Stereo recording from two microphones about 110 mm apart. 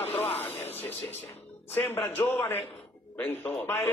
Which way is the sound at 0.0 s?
65° left (ahead or behind).